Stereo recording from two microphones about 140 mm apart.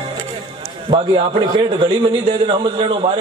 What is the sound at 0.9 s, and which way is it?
A man's voice, 35° right (ahead or behind).